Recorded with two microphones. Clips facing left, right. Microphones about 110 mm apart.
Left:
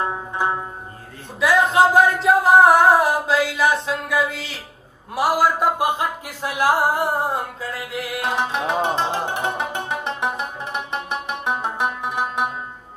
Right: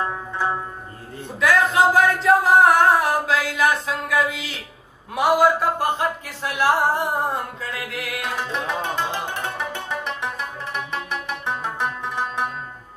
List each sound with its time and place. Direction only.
0.0 s music: 20° left (ahead or behind)
1.4 s singing: centre (ahead or behind)
5.1 s speech: 5° left (ahead or behind)
7.1 s music: 5° left (ahead or behind)
8.6 s music: 20° left (ahead or behind)